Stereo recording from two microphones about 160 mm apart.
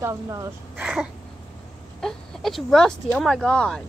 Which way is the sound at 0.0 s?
20° right (ahead or behind).